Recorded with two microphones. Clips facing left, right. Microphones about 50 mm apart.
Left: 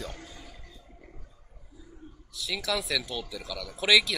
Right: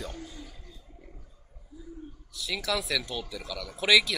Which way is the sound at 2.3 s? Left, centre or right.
Centre.